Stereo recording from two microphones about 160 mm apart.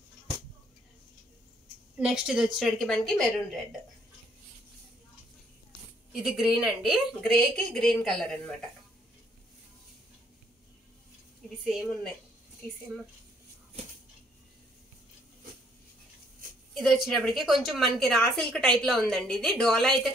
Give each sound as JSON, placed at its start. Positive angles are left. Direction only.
{"t": 2.0, "sound": "a woman's voice", "side_deg": -5}
{"t": 6.1, "sound": "a woman's voice", "side_deg": -5}
{"t": 16.4, "sound": "a sound", "side_deg": -60}
{"t": 16.7, "sound": "a woman's voice", "side_deg": 0}